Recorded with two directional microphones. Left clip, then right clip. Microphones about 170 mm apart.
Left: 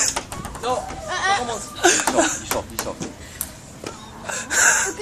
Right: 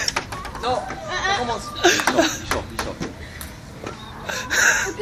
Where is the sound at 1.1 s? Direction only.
40° left (ahead or behind).